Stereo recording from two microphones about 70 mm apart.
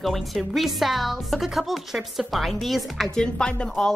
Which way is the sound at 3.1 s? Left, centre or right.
Centre.